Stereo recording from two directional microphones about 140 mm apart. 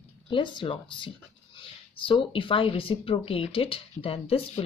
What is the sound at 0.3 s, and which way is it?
Speech, 35° left (ahead or behind).